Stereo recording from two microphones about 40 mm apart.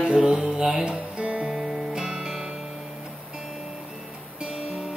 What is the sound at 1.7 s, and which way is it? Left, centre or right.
Music, centre.